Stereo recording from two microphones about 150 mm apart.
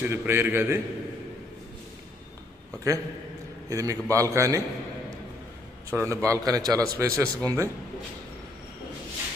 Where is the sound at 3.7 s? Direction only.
20° right (ahead or behind).